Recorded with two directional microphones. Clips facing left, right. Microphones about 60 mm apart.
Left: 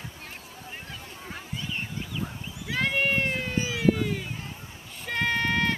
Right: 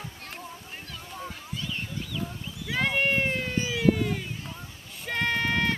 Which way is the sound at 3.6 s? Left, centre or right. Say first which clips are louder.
Left 1 dB; centre.